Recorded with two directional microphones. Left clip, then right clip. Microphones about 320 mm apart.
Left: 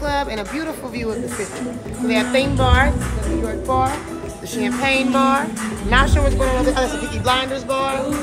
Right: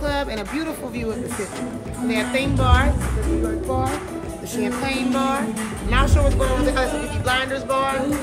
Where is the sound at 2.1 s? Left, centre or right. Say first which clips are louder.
Left 4 dB; left.